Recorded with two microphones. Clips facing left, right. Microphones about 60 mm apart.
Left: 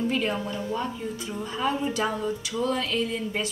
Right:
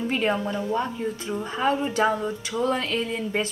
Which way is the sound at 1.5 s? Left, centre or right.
Right.